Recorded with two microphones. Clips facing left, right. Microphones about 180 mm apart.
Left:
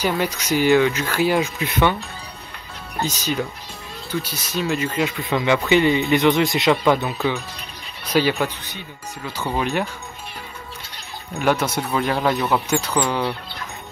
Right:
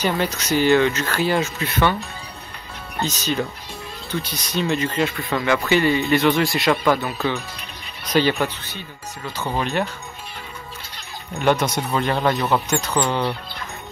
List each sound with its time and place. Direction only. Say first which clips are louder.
0.0 s speech: even; 10° left (ahead or behind)
3.0 s speech: even; 10° left (ahead or behind)
11.3 s speech: right 1 dB; 5° left (ahead or behind)